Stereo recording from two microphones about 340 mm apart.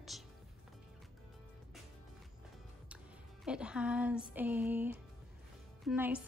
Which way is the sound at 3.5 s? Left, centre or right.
Centre.